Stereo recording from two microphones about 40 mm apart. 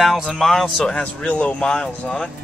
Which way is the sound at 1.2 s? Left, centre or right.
Left.